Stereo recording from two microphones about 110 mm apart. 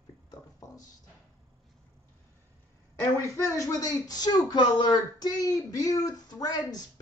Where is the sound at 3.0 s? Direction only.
25° left (ahead or behind).